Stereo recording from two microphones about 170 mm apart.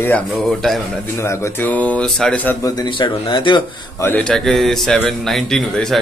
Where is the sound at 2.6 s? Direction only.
25° left (ahead or behind).